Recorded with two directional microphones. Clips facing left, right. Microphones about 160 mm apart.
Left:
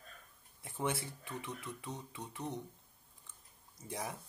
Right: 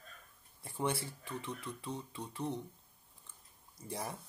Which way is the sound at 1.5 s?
20° left (ahead or behind).